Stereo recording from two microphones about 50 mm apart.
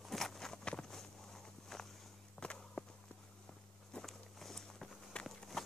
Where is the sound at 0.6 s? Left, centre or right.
Centre.